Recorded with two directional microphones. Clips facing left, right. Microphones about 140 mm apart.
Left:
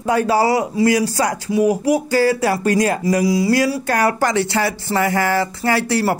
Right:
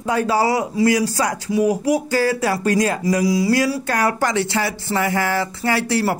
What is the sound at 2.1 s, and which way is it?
Speech, 30° left (ahead or behind).